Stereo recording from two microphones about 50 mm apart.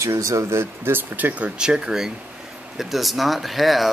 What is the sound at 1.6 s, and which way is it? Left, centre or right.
Speech, centre.